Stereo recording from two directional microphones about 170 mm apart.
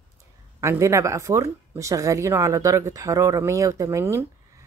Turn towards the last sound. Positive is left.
turn(degrees=-15)  # may be behind; listen again after turning